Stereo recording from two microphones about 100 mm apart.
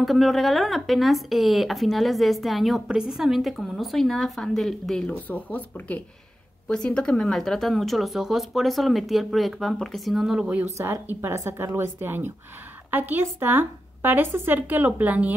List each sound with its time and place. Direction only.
0.0 s speech: centre (ahead or behind)
10.8 s speech: 25° right (ahead or behind)